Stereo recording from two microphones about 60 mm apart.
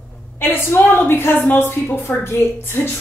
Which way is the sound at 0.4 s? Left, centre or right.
Left.